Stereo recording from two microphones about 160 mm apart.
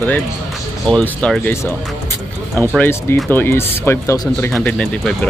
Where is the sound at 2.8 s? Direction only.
15° left (ahead or behind).